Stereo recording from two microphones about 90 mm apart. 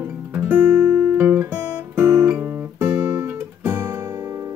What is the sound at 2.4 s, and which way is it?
Guitar, 20° right (ahead or behind).